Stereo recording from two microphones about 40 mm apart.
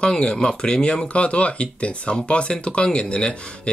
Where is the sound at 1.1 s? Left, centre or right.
Left.